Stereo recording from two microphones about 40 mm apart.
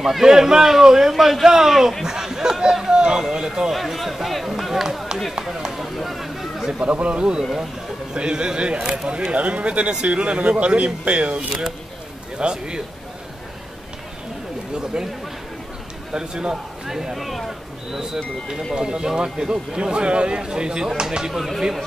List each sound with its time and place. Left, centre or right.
0.0 s speech: centre
3.7 s speech: centre
5.6 s speech: centre
5.9 s a sound: centre
6.8 s a man's voice: right
9.3 s a man's voice: right
16.1 s a man's voice: right
16.9 s speech: centre
17.9 s a man's voice: centre
21.3 s speech: centre